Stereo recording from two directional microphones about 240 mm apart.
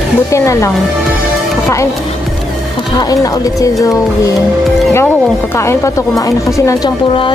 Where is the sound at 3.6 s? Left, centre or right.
Centre.